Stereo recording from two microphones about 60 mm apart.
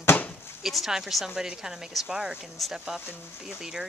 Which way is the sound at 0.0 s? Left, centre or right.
Left.